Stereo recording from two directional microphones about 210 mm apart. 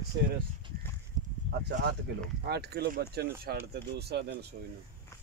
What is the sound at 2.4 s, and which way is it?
Speech, 50° right (ahead or behind).